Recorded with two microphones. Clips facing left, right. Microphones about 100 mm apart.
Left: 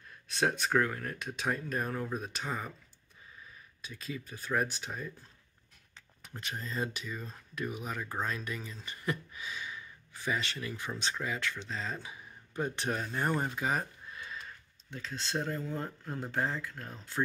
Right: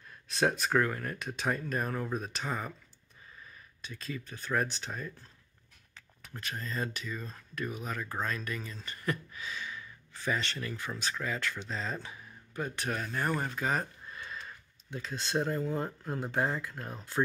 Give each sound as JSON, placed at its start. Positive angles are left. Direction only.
{"t": 0.3, "sound": "speech", "side_deg": 0}
{"t": 3.8, "sound": "speech", "side_deg": 5}
{"t": 5.9, "sound": "speech", "side_deg": 20}
{"t": 11.0, "sound": "speech", "side_deg": 25}
{"t": 11.2, "sound": "speech", "side_deg": 5}
{"t": 12.1, "sound": "speech", "side_deg": 25}
{"t": 13.6, "sound": "a sound", "side_deg": 10}
{"t": 14.9, "sound": "speech", "side_deg": -10}